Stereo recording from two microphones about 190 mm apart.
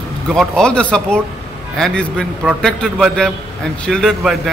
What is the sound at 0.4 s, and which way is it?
A man's voice, 5° left (ahead or behind).